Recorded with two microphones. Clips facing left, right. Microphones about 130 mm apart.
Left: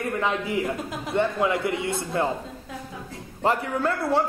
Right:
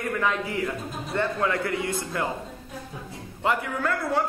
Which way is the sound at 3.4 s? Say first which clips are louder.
Left 2 dB; 35° left (ahead or behind).